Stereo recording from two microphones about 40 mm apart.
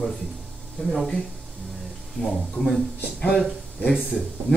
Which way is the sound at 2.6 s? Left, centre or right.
Left.